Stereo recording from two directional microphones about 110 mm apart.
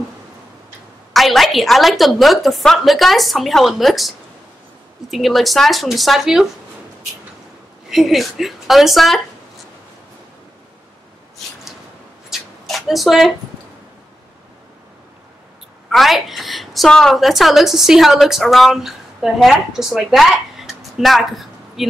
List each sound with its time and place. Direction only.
1.1 s a woman's voice: centre (ahead or behind)
5.1 s a woman's voice: centre (ahead or behind)
7.9 s a woman's voice: centre (ahead or behind)
12.3 s rub: centre (ahead or behind)
15.9 s a woman's voice: centre (ahead or behind)